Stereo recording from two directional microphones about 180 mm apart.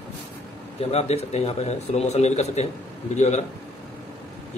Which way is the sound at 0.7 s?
35° left (ahead or behind).